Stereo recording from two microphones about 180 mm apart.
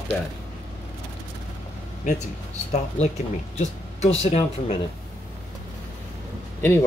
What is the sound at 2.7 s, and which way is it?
Speech, 40° left (ahead or behind).